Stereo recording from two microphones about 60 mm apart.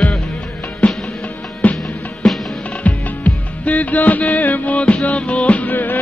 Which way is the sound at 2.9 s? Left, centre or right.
Left.